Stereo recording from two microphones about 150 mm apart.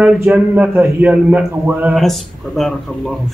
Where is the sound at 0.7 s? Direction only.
20° right (ahead or behind).